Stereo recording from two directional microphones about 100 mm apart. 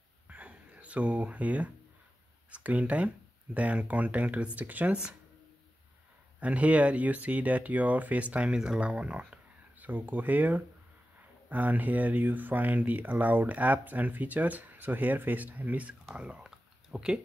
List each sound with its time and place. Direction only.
0.3 s a sound: 10° right (ahead or behind)
2.5 s speech: 15° right (ahead or behind)
6.4 s speech: 15° right (ahead or behind)